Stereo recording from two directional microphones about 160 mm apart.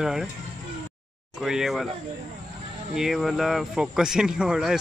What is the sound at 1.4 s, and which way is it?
Speech, centre (ahead or behind).